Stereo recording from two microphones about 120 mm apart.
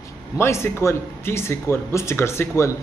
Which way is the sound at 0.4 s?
20° left (ahead or behind).